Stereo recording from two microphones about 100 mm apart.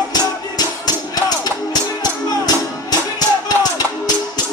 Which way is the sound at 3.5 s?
40° left (ahead or behind).